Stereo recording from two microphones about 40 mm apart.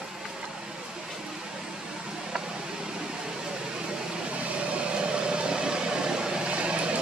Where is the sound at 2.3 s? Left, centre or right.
Centre.